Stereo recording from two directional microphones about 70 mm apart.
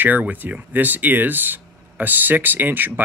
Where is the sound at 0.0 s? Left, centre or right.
Right.